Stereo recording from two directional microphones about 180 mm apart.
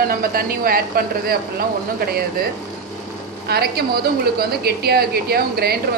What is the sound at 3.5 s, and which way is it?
A woman's voice, 60° right (ahead or behind).